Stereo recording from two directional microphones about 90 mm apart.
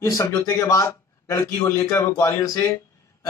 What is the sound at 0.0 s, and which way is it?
A man's voice, 40° left (ahead or behind).